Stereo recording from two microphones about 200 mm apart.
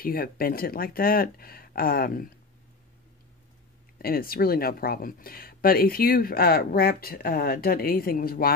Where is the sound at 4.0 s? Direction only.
45° left (ahead or behind).